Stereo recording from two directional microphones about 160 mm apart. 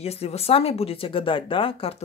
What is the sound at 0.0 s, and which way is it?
Speech, 40° left (ahead or behind).